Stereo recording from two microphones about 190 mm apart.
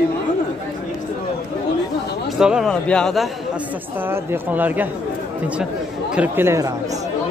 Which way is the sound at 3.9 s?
10° right (ahead or behind).